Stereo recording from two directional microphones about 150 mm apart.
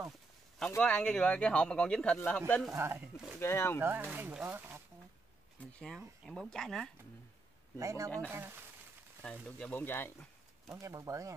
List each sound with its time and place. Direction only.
0.7 s speech: 10° left (ahead or behind)
2.7 s speech: 15° right (ahead or behind)
3.3 s speech: 15° left (ahead or behind)
3.8 s speech: 10° right (ahead or behind)
5.6 s speech: 5° left (ahead or behind)
7.8 s speech: 20° right (ahead or behind)
9.6 s speech: 10° left (ahead or behind)
10.7 s speech: 20° right (ahead or behind)